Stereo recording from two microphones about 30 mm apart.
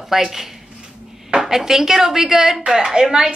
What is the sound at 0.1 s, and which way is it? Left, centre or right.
Speech, centre.